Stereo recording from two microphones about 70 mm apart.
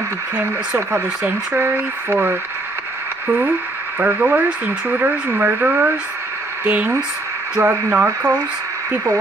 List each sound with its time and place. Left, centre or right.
1.2 s speech: right
4.0 s speech: right